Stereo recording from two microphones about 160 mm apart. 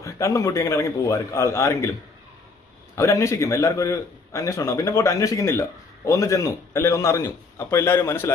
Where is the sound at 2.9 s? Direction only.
20° left (ahead or behind).